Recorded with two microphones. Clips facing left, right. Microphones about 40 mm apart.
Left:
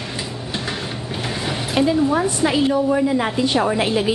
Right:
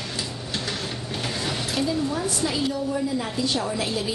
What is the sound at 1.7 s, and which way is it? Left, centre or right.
A woman's voice, left.